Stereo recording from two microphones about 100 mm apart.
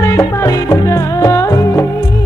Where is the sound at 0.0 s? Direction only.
30° left (ahead or behind).